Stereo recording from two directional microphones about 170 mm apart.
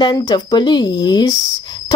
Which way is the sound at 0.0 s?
25° left (ahead or behind).